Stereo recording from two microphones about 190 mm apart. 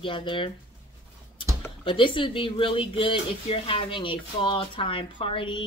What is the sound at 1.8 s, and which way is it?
Speech, 25° left (ahead or behind).